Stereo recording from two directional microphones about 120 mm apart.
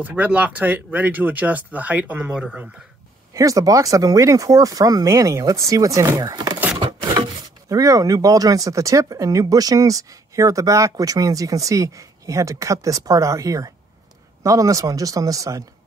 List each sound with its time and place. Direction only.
0.0 s speech: 10° right (ahead or behind)
3.3 s speech: 30° right (ahead or behind)
7.7 s speech: 30° right (ahead or behind)